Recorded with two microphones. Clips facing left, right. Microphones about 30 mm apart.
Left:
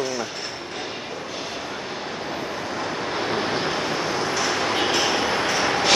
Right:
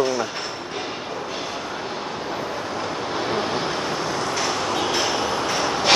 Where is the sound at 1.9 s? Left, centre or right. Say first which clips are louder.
Right 1 dB; centre.